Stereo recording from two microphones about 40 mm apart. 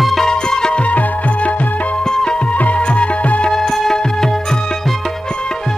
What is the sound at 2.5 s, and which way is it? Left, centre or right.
Music, left.